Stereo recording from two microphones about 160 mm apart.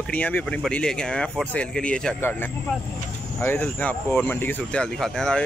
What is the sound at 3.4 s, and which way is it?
A man's voice, 10° left (ahead or behind).